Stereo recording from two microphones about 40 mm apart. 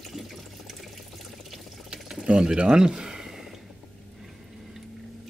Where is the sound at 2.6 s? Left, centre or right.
Centre.